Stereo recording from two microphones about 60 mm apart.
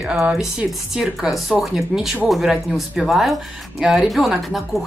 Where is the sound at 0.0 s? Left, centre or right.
Centre.